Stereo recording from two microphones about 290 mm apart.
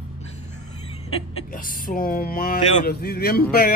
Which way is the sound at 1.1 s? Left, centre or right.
Left.